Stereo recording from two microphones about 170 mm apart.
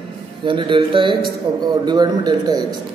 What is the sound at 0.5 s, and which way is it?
Speech, 30° right (ahead or behind).